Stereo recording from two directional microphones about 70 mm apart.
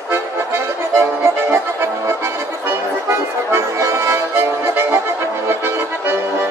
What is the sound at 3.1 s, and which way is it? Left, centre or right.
Accordion, right.